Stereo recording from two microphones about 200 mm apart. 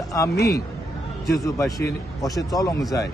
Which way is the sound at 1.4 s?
15° left (ahead or behind).